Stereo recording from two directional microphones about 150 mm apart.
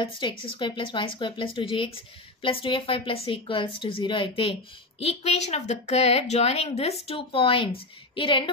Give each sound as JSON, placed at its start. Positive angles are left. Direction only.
{"t": 0.0, "sound": "a woman's voice", "side_deg": 35}